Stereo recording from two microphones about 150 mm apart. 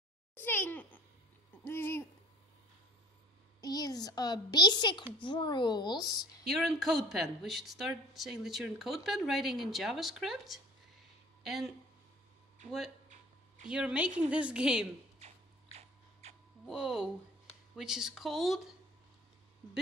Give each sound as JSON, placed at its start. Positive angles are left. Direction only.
{"t": 0.4, "sound": "babbling", "side_deg": 15}
{"t": 1.6, "sound": "owl", "side_deg": 15}
{"t": 3.6, "sound": "a woman's voice", "side_deg": 25}
{"t": 6.4, "sound": "speech", "side_deg": 0}
{"t": 13.7, "sound": "a woman's voice", "side_deg": -5}
{"t": 15.1, "sound": "a sound", "side_deg": -45}
{"t": 16.6, "sound": "speech", "side_deg": -5}